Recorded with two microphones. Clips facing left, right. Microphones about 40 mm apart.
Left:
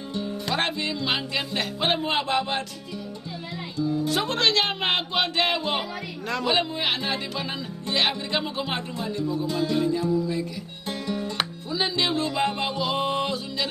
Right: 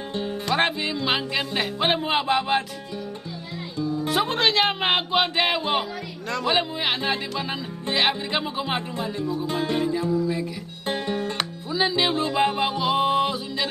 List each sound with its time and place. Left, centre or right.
0.6 s music: centre
4.1 s music: centre
9.5 s music: right
9.8 s music: centre
10.9 s music: right
11.7 s music: centre